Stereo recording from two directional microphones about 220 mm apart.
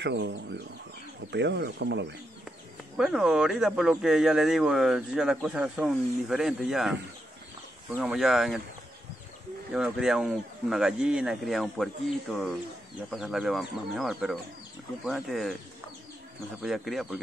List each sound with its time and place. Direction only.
0.0 s speech: 50° right (ahead or behind)
3.0 s speech: centre (ahead or behind)
8.0 s speech: centre (ahead or behind)
9.8 s speech: 5° right (ahead or behind)
16.6 s speech: centre (ahead or behind)